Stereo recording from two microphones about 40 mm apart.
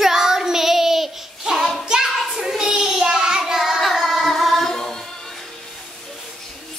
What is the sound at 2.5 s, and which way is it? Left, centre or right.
Child singing, centre.